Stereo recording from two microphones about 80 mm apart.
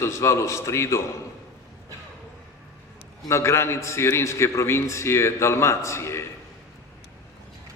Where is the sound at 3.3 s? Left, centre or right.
Left.